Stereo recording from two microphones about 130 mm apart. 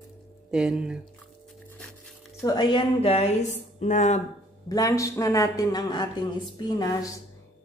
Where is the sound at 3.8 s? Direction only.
70° left (ahead or behind).